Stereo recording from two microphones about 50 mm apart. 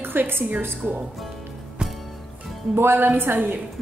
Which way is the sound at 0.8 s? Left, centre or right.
Right.